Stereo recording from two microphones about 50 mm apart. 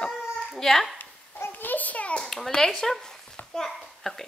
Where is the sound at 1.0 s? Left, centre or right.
Left.